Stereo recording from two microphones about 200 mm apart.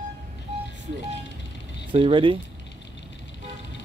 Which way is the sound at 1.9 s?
25° right (ahead or behind).